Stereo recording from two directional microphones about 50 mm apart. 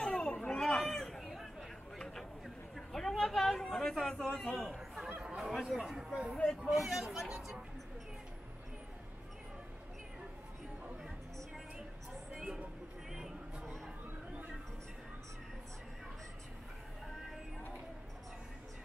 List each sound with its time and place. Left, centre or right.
0.0 s chatter: centre
2.0 s a sound: centre
3.4 s chatter: centre
4.1 s a man's voice: centre
4.4 s a man's voice: centre
4.6 s chatter: centre
5.2 s chatter: centre
5.7 s speech: centre
6.3 s speech: left
6.8 s speech: centre